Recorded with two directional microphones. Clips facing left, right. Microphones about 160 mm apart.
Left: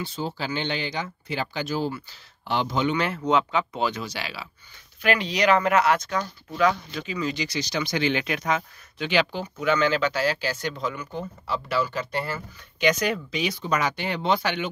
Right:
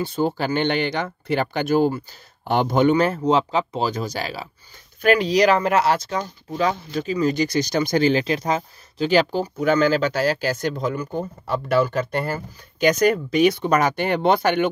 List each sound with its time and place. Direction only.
0.0 s speech: 50° right (ahead or behind)